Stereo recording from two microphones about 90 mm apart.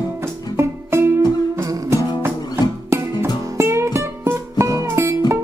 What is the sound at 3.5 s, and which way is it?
Music, 30° right (ahead or behind).